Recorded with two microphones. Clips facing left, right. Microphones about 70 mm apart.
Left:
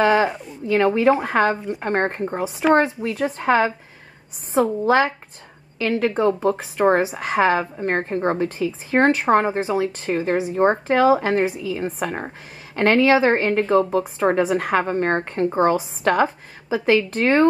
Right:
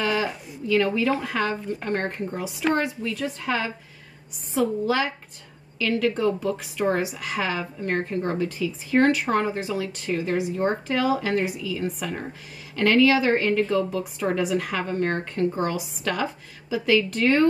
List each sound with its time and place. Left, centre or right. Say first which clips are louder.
0.0 s a woman's voice: left 8 dB; left